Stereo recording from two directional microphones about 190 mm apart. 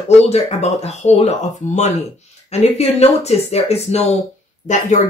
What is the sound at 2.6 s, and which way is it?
Speech, 35° left (ahead or behind).